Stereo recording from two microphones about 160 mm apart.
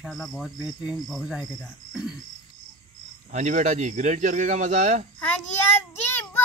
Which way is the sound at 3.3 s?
50° right (ahead or behind).